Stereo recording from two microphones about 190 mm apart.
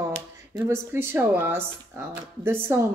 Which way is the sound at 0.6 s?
10° right (ahead or behind).